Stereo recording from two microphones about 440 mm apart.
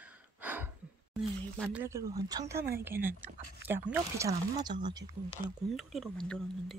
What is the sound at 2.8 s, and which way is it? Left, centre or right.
Speech, centre.